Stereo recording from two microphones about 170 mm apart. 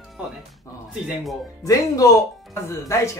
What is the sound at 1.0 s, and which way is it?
Speech, centre (ahead or behind).